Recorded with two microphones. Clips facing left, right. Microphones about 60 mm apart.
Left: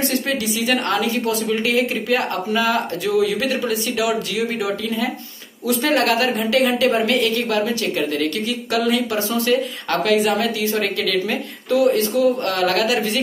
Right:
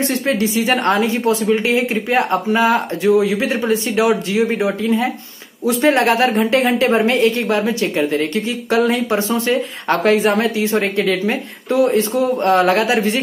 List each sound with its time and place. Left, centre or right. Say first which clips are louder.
0.1 s speech: right 4 dB; right